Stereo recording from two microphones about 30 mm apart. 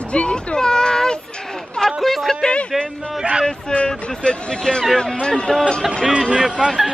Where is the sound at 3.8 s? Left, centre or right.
Left.